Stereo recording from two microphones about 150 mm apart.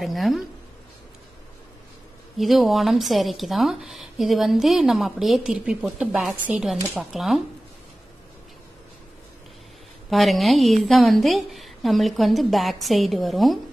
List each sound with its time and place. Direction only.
0.0 s a woman's voice: centre (ahead or behind)
2.3 s a woman's voice: centre (ahead or behind)
10.0 s a woman's voice: centre (ahead or behind)